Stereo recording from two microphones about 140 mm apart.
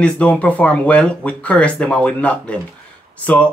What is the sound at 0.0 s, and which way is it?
Speech, 10° left (ahead or behind).